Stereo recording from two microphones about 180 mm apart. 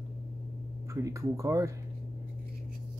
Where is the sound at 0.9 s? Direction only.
15° right (ahead or behind).